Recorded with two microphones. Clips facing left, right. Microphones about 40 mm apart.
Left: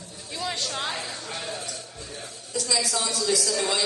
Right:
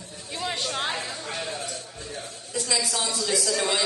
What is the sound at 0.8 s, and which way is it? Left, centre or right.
Speech, right.